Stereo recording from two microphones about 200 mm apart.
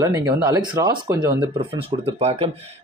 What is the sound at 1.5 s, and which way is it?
Speech, 30° right (ahead or behind).